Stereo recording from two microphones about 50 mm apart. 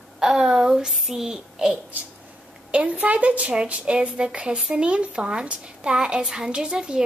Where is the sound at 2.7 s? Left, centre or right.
Right.